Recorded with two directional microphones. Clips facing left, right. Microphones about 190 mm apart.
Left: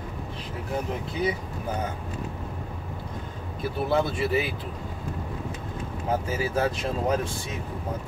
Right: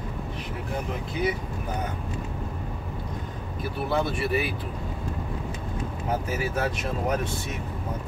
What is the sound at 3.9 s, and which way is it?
Speech, 25° left (ahead or behind).